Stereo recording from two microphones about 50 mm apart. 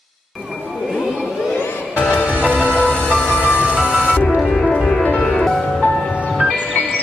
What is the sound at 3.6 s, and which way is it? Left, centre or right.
Music, right.